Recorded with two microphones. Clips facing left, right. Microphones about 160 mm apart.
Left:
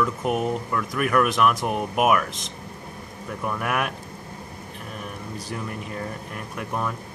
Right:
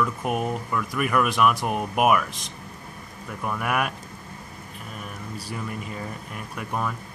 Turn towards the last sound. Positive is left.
turn(degrees=0)  # may be behind; listen again after turning